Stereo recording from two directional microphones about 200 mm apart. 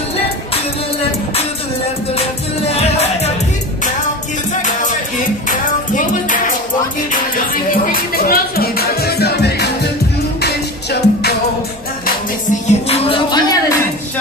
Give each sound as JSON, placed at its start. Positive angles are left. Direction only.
{"t": 5.5, "sound": "music", "side_deg": 40}
{"t": 12.6, "sound": "music", "side_deg": 30}